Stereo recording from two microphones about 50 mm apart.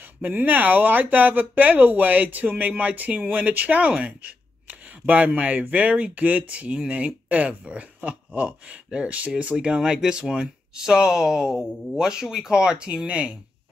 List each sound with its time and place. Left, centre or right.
0.2 s speech: right
9.8 s speech: centre